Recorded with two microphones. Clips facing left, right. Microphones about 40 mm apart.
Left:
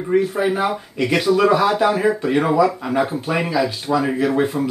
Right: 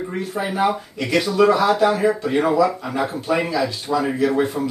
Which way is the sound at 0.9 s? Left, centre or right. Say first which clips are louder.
Left 5 dB; centre.